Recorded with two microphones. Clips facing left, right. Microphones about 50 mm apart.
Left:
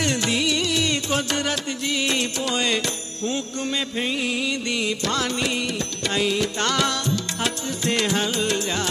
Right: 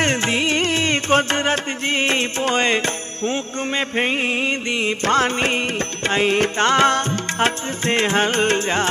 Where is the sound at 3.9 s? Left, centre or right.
Right.